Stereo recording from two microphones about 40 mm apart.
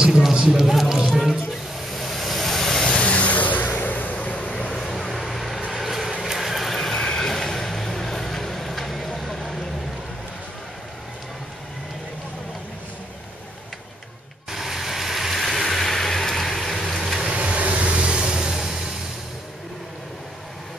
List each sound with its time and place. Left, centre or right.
0.0 s a sound: centre
2.0 s vehicle: centre
2.9 s a sound: left
4.5 s vehicle: left
4.7 s vehicle: centre
7.0 s vehicle: centre
14.5 s vehicle: centre
17.3 s vehicle: right